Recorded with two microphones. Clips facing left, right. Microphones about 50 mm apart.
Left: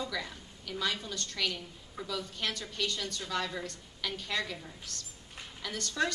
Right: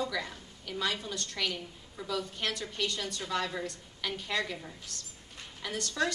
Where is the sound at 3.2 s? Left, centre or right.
Centre.